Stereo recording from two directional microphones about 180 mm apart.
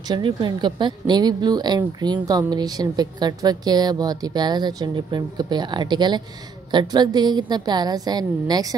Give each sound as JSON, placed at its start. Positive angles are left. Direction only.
{"t": 0.1, "sound": "speech", "side_deg": -25}